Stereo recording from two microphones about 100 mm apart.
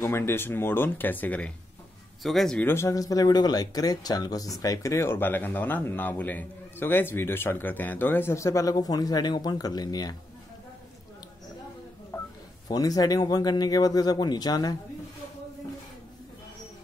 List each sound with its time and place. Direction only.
0.0 s speech: 25° left (ahead or behind)
2.2 s speech: 5° left (ahead or behind)
2.6 s speech: 25° left (ahead or behind)
12.1 s telephone dialing: 20° left (ahead or behind)
12.6 s speech: 40° left (ahead or behind)